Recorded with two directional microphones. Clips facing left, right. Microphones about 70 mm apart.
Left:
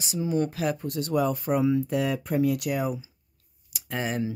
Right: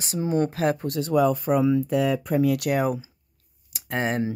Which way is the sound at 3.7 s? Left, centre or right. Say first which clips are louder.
Right 4 dB; right.